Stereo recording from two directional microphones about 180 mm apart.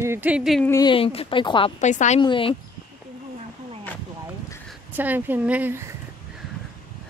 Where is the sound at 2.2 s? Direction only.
30° left (ahead or behind).